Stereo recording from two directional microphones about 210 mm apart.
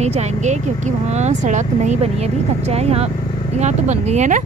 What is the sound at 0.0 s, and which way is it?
Speech, 30° right (ahead or behind).